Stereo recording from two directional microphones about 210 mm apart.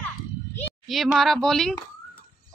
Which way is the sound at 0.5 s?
Centre (ahead or behind).